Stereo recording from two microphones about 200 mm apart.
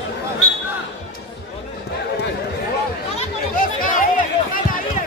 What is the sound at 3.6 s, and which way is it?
Chatter, 40° left (ahead or behind).